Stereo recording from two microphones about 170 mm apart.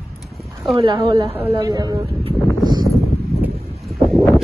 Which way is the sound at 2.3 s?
25° right (ahead or behind).